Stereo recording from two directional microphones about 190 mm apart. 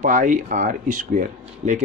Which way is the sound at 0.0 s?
40° right (ahead or behind).